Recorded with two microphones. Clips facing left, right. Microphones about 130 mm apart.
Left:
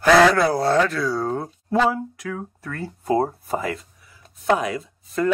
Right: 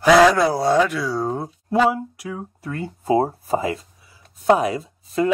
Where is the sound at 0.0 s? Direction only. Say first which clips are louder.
Right 1 dB; 10° right (ahead or behind).